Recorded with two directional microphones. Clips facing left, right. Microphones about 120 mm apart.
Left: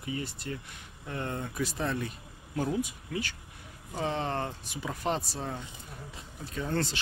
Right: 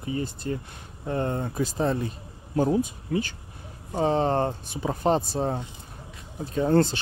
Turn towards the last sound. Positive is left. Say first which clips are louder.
# right 11 dB
turn(degrees=-40)  # may be behind; listen again after turning